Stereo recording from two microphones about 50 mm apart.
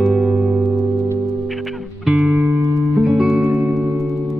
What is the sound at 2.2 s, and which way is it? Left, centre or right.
Music, centre.